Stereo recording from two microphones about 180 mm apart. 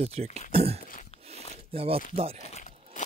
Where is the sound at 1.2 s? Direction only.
35° right (ahead or behind).